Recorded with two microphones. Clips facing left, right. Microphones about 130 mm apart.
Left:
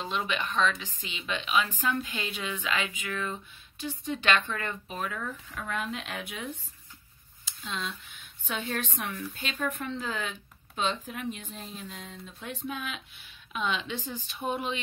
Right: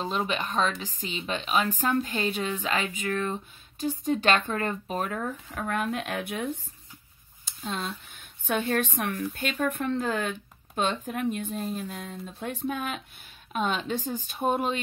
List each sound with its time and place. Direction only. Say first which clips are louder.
0.0 s speech: right 3 dB; 35° right (ahead or behind)